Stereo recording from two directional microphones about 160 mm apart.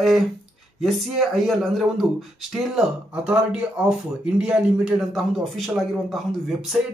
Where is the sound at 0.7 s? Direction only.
Centre (ahead or behind).